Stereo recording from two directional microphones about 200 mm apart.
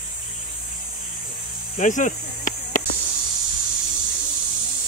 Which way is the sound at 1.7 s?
40° left (ahead or behind).